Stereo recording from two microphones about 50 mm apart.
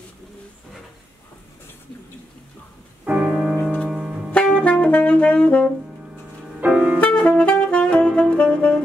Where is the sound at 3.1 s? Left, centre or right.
Centre.